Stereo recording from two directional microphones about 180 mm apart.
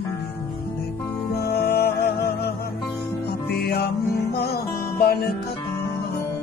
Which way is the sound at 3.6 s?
60° left (ahead or behind).